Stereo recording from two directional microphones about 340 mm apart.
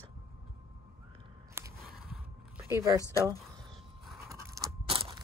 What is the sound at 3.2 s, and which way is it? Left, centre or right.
Speech, centre.